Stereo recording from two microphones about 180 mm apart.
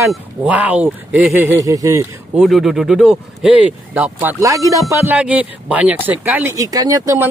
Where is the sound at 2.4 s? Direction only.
Centre (ahead or behind).